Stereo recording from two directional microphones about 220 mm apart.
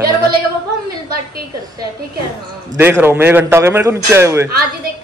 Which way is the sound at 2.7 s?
10° right (ahead or behind).